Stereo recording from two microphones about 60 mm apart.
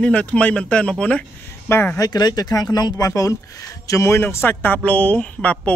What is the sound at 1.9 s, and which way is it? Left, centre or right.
Speech, left.